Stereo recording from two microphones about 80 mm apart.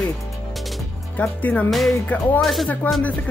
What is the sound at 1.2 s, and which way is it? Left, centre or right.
Music, centre.